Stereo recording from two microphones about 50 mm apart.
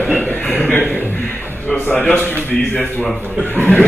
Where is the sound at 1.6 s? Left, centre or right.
Left.